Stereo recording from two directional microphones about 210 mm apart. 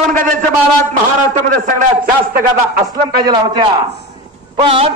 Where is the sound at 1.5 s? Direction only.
40° right (ahead or behind).